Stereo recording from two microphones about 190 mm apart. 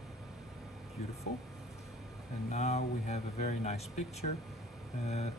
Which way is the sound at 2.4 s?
35° left (ahead or behind).